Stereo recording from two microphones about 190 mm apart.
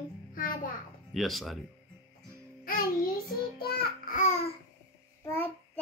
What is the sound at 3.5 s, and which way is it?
Speech, 55° left (ahead or behind).